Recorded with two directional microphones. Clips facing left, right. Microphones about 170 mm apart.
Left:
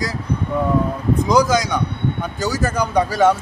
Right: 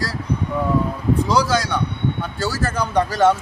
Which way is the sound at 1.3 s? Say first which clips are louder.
Left 6 dB; 15° left (ahead or behind).